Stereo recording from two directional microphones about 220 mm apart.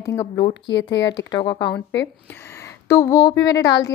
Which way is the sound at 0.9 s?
55° left (ahead or behind).